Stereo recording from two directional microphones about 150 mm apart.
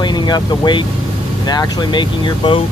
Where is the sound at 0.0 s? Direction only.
30° left (ahead or behind).